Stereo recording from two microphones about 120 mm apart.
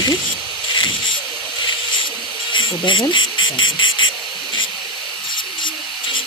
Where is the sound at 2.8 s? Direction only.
40° left (ahead or behind).